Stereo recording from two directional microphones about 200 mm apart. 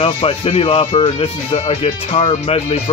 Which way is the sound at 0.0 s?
30° left (ahead or behind).